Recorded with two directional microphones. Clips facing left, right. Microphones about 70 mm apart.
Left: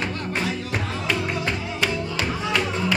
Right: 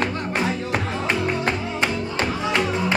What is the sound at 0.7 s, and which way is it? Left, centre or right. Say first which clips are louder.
Music: right 1 dB; right.